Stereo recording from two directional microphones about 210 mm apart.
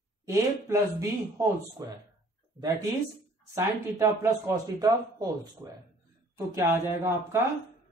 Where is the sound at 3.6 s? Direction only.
15° right (ahead or behind).